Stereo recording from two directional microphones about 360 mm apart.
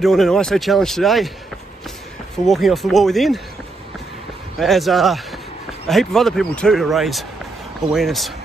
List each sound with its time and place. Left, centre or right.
0.0 s speech: centre
2.4 s speech: centre
4.6 s speech: centre